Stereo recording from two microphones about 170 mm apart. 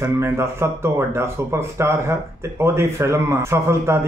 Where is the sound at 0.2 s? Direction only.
15° right (ahead or behind).